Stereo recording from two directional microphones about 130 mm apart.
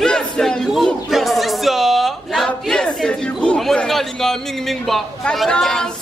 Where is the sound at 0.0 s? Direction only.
5° left (ahead or behind).